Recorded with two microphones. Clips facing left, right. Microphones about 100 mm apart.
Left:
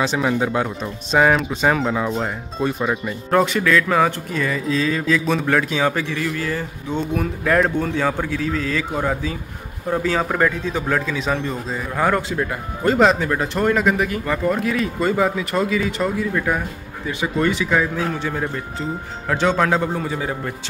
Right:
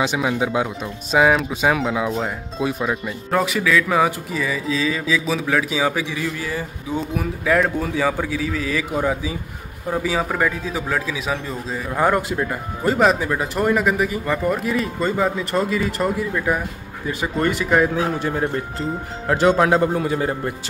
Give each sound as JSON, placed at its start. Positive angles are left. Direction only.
{"t": 0.0, "sound": "speech", "side_deg": -10}
{"t": 17.1, "sound": "speech", "side_deg": -45}
{"t": 18.8, "sound": "speech", "side_deg": -5}